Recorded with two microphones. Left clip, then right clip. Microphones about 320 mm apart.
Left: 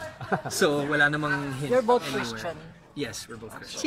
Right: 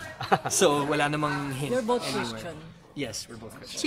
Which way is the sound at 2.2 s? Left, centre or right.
Left.